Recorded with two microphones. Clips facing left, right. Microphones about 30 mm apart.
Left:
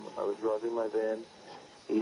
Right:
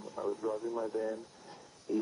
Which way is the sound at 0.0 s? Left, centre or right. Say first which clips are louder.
Left 3 dB; left.